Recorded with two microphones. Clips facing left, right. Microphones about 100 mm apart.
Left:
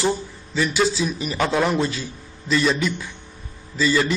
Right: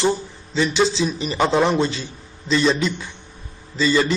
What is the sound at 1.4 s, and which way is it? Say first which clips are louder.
Speech: right 3 dB; 25° right (ahead or behind).